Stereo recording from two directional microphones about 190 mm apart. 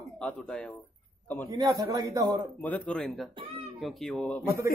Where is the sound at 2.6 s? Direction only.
5° left (ahead or behind).